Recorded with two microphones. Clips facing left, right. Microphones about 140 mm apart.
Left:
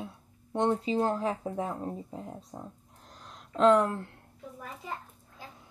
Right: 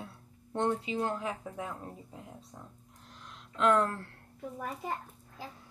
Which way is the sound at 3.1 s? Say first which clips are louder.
Left 8 dB; 35° left (ahead or behind).